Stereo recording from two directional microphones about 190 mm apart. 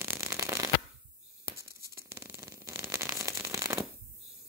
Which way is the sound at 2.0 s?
15° right (ahead or behind).